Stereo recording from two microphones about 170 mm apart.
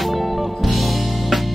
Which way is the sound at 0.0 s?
Centre (ahead or behind).